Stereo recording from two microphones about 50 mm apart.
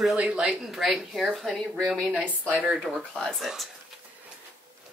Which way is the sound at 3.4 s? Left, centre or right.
Centre.